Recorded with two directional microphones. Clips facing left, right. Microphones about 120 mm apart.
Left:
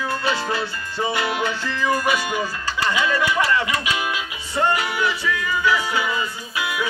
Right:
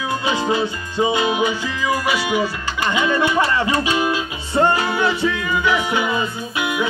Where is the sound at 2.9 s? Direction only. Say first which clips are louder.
Right 4 dB; 25° right (ahead or behind).